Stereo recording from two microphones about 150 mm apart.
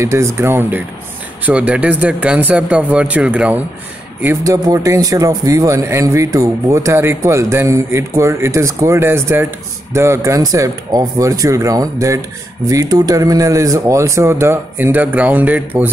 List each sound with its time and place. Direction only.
0.0 s speech: 20° right (ahead or behind)